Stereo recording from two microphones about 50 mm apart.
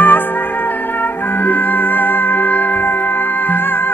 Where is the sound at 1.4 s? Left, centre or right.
Left.